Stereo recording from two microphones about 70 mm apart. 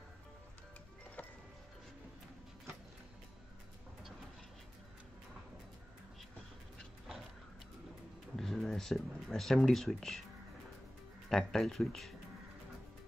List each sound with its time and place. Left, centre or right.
1.2 s music: left
8.4 s speech: centre
11.2 s speech: centre